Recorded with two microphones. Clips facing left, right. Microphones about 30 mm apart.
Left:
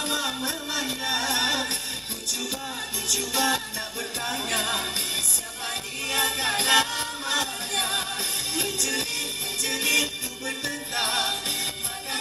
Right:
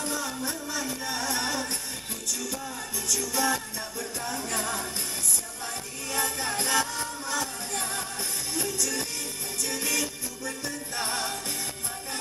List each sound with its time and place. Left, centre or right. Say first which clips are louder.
0.0 s music: left 4 dB; left
3.1 s music: left 2 dB; left